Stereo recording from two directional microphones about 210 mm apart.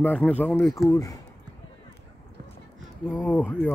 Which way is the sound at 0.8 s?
15° left (ahead or behind).